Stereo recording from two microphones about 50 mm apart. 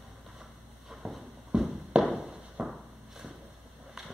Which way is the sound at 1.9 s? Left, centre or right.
Right.